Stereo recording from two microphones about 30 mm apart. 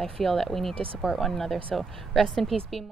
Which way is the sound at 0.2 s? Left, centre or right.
Centre.